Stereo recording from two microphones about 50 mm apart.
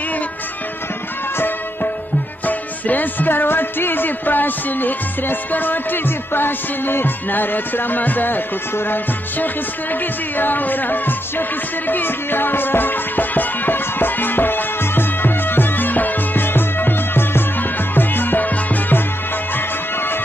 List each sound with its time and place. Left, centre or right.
2.4 s speech: left
8.7 s music: left
10.3 s speech: left
11.9 s music: left